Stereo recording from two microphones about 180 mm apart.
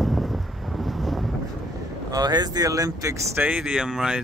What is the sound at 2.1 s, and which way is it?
Speech, 20° right (ahead or behind).